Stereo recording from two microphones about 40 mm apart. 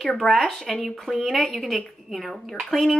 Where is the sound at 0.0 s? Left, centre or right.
Centre.